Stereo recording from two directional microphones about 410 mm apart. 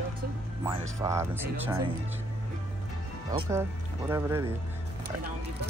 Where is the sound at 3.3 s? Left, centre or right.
Centre.